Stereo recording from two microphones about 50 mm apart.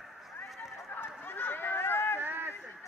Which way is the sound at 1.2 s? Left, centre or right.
Left.